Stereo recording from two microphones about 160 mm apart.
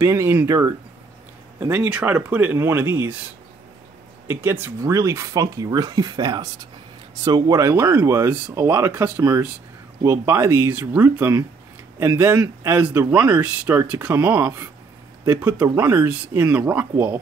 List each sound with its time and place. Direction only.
0.0 s speech: 20° right (ahead or behind)
4.3 s speech: 15° right (ahead or behind)